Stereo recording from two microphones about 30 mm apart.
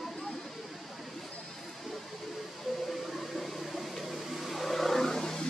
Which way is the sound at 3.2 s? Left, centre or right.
Centre.